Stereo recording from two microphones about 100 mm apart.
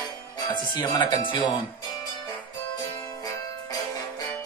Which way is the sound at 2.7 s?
40° left (ahead or behind).